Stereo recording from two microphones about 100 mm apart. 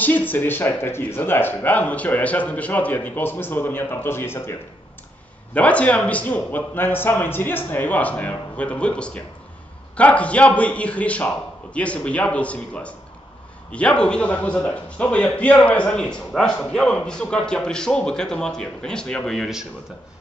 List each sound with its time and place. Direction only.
0.0 s speech: 20° left (ahead or behind)
5.5 s a man's voice: 15° left (ahead or behind)